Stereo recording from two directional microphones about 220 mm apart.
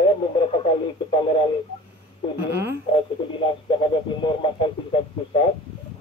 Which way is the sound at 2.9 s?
20° left (ahead or behind).